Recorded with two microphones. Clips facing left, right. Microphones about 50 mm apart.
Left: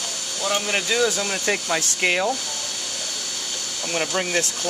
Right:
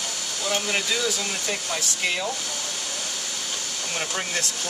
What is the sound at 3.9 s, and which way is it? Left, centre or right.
Speech, centre.